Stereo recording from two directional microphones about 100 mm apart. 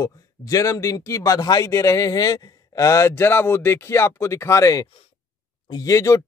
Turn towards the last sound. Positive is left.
turn(degrees=35)  # may be behind; listen again after turning